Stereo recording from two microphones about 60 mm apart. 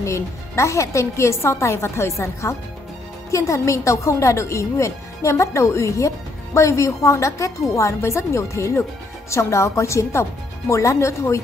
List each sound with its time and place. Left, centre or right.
0.0 s a woman's voice: left